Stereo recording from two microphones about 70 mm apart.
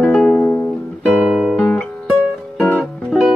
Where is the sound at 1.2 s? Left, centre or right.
Centre.